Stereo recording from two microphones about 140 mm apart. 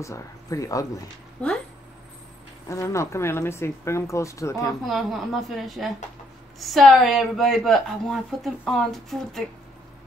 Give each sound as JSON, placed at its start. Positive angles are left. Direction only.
{"t": 0.0, "sound": "speech", "side_deg": 25}
{"t": 2.7, "sound": "speech", "side_deg": 20}
{"t": 4.8, "sound": "speech", "side_deg": 0}